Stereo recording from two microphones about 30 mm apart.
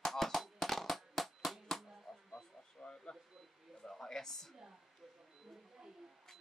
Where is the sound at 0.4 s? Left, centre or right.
Centre.